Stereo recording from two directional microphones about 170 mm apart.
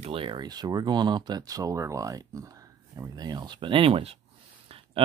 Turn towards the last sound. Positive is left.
turn(degrees=-35)  # may be behind; listen again after turning